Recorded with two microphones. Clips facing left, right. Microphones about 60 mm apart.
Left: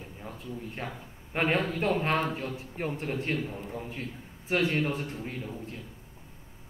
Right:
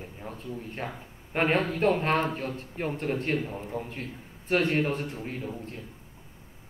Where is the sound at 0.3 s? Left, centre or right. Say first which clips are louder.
Right 1 dB; right.